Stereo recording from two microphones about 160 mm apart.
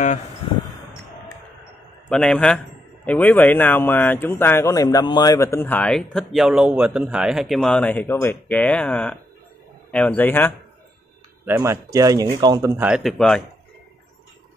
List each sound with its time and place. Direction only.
0.4 s a sound: 35° left (ahead or behind)
2.0 s a man's voice: 5° left (ahead or behind)
11.4 s speech: 15° right (ahead or behind)
12.8 s a man's voice: 5° right (ahead or behind)